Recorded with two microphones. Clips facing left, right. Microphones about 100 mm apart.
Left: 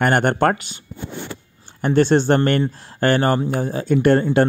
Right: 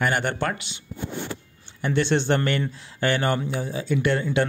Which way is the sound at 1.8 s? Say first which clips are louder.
Left 7 dB; 45° left (ahead or behind).